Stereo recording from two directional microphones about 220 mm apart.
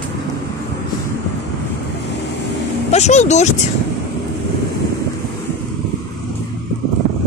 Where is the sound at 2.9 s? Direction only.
30° left (ahead or behind).